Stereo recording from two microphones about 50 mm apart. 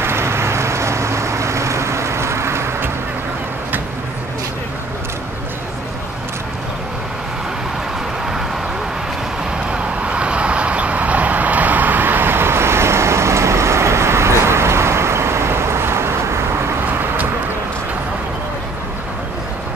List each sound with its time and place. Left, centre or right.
0.0 s vehicle: right
9.7 s vehicle: right